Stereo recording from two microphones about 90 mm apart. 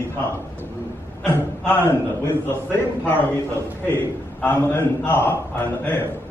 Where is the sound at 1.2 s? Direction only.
20° left (ahead or behind).